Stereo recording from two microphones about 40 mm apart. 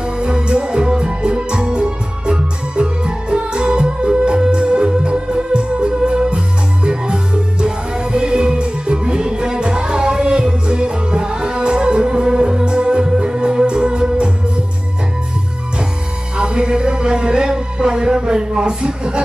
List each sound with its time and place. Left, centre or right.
0.2 s music: right
16.3 s music: right